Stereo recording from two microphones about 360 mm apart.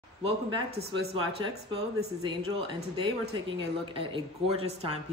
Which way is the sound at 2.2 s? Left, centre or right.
Centre.